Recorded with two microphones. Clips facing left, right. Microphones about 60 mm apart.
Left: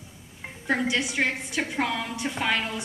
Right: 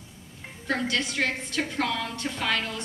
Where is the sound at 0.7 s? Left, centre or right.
Centre.